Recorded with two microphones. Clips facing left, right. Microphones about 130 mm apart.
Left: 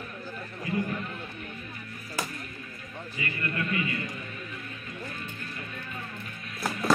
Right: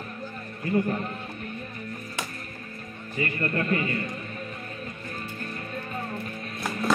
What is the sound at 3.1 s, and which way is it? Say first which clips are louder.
Speech: right 7 dB; 40° right (ahead or behind).